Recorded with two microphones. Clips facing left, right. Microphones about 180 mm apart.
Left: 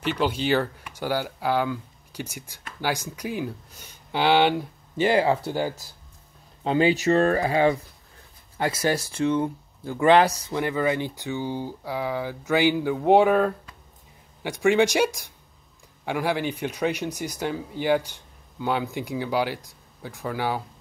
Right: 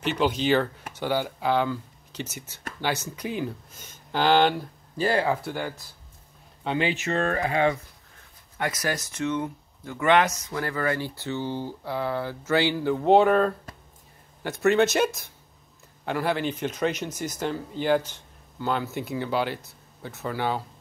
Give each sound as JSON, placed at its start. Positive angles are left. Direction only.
{"t": 0.0, "sound": "speech", "side_deg": 10}
{"t": 4.9, "sound": "speech", "side_deg": 25}
{"t": 10.6, "sound": "speech", "side_deg": 20}